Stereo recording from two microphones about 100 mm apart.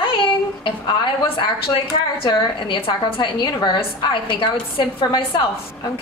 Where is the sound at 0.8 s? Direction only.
60° left (ahead or behind).